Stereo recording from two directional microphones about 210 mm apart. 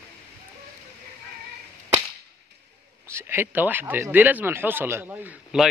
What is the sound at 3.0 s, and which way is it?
Speech, 10° right (ahead or behind).